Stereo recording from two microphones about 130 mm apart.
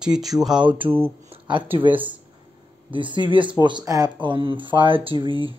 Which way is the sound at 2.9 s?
40° right (ahead or behind).